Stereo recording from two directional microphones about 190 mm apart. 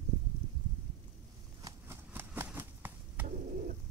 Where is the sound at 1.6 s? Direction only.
10° right (ahead or behind).